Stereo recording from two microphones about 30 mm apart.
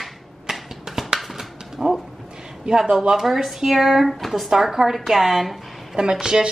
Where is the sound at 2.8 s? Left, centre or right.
Right.